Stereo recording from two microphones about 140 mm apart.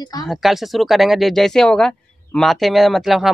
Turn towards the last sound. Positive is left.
turn(degrees=0)  # may be behind; listen again after turning